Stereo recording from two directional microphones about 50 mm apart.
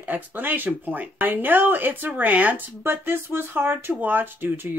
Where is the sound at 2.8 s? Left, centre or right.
Right.